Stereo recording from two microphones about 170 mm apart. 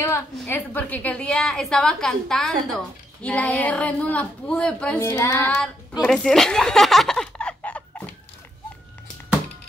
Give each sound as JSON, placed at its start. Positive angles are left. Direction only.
{"t": 0.0, "sound": "a woman's voice", "side_deg": 15}
{"t": 5.1, "sound": "child singing", "side_deg": 20}
{"t": 5.5, "sound": "a woman's voice", "side_deg": 5}